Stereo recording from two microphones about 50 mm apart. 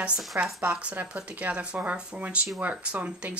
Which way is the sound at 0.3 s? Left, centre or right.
Right.